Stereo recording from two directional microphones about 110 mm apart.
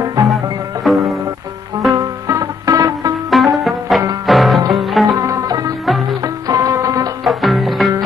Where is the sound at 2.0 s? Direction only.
30° right (ahead or behind).